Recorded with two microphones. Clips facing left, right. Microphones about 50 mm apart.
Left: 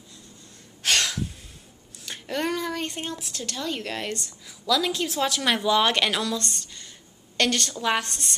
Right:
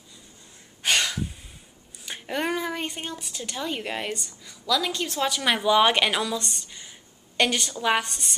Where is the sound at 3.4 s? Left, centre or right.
Centre.